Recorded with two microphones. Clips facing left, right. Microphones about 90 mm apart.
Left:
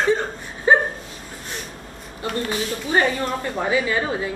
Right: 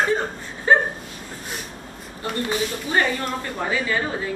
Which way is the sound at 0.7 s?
15° left (ahead or behind).